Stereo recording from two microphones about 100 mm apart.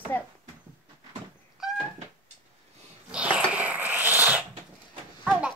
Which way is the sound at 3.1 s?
15° right (ahead or behind).